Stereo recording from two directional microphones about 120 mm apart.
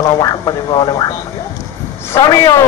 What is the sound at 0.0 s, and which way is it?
Speech, 30° left (ahead or behind).